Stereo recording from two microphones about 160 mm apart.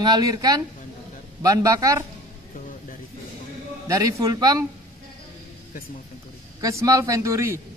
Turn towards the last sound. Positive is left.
turn(degrees=-20)  # may be behind; listen again after turning